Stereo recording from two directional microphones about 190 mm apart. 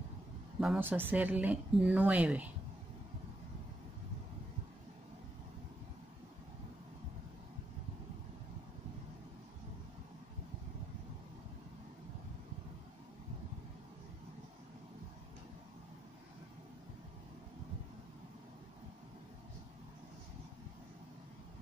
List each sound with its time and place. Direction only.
0.6 s speech: 5° right (ahead or behind)